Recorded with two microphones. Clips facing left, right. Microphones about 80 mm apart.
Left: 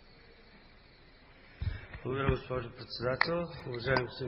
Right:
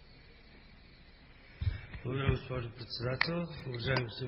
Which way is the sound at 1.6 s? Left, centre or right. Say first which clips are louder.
Left 3 dB; centre.